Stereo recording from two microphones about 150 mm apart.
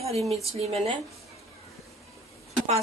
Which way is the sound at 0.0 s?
45° right (ahead or behind).